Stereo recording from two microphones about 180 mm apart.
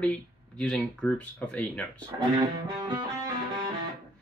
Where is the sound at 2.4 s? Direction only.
20° right (ahead or behind).